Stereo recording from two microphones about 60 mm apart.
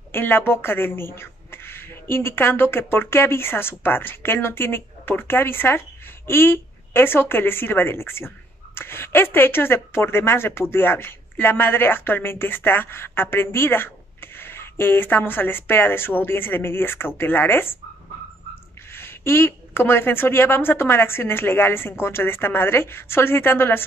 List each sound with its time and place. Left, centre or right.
0.1 s speech: left
18.9 s speech: left